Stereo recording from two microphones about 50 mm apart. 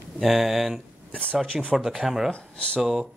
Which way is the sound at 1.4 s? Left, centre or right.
Centre.